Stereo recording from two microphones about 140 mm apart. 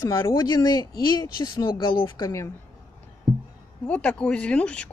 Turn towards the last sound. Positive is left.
turn(degrees=10)  # may be behind; listen again after turning